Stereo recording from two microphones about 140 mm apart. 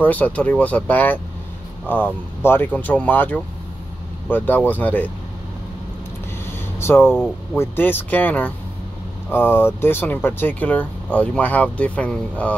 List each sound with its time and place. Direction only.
0.0 s speech: 10° left (ahead or behind)
2.4 s speech: 15° left (ahead or behind)
7.0 s speech: 5° right (ahead or behind)
7.5 s speech: 15° left (ahead or behind)